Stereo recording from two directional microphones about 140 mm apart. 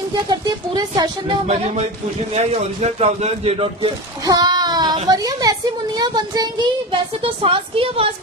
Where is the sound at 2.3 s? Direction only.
50° right (ahead or behind).